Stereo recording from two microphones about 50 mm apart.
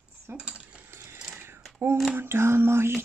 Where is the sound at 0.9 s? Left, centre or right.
Right.